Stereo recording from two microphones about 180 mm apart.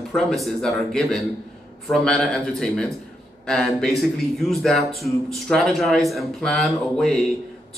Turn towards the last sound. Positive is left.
turn(degrees=5)  # may be behind; listen again after turning